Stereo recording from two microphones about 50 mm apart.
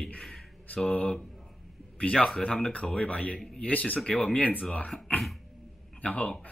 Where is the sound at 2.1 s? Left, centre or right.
Centre; by 4.6 s left.